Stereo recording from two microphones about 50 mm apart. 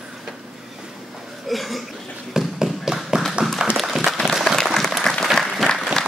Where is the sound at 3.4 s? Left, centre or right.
Right.